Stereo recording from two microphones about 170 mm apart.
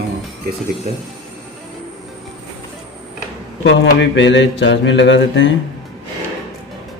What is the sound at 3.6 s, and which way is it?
Mantra, 90° left.